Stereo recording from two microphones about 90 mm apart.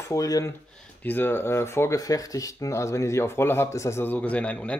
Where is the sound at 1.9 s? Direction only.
40° left (ahead or behind); by 4.7 s 15° left (ahead or behind).